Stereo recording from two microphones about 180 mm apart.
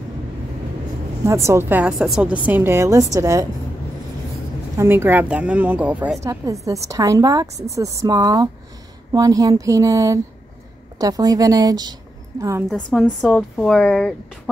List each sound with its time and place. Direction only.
1.2 s a woman's voice: 15° right (ahead or behind)
4.7 s a woman's voice: 10° right (ahead or behind)
6.4 s a woman's voice: 20° right (ahead or behind)
12.6 s speech: 5° left (ahead or behind)